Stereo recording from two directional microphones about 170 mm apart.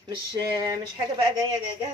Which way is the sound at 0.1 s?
25° right (ahead or behind).